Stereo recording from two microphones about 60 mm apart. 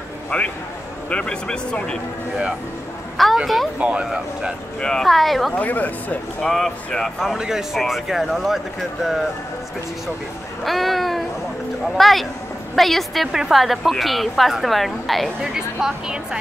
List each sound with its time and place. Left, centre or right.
0.3 s speech: centre
3.2 s a sound: centre
3.8 s speech: centre
4.7 s a woman's voice: centre
5.6 s speech: left
6.4 s a woman's voice: centre
7.2 s a woman's voice: centre
10.6 s a woman's voice: centre
15.4 s speech: centre